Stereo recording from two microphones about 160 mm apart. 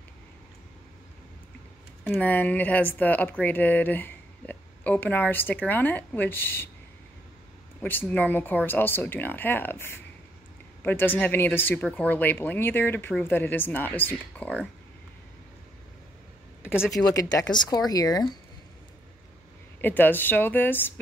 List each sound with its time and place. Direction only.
2.0 s speech: 10° left (ahead or behind)
7.8 s speech: 10° left (ahead or behind)
16.9 s speech: 20° left (ahead or behind)
19.8 s speech: 10° left (ahead or behind)